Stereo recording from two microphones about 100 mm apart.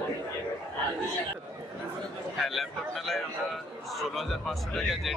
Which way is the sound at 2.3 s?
Centre (ahead or behind).